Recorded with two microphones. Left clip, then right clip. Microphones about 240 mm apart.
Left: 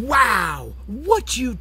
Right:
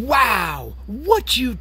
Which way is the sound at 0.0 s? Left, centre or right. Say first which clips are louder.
Even; centre.